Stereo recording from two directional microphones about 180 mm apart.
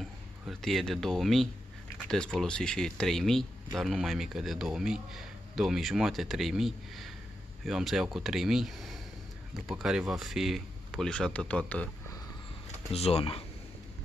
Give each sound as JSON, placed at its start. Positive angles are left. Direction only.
{"t": 0.5, "sound": "speech", "side_deg": 0}
{"t": 12.9, "sound": "speech", "side_deg": 35}